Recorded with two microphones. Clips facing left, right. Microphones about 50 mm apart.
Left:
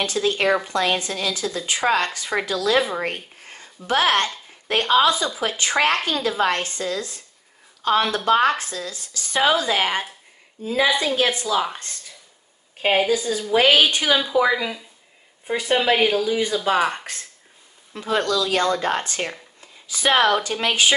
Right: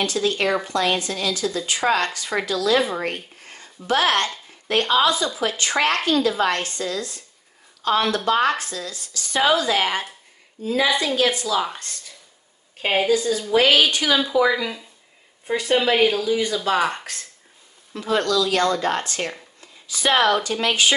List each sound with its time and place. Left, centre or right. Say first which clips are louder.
0.0 s speech: left 1 dB; left
3.4 s a sound: right 2 dB; left
4.6 s speech: left 1 dB; left
12.8 s speech: even; centre
16.3 s speech: even; left